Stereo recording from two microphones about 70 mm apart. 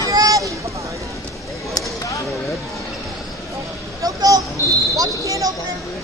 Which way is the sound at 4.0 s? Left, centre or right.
Right.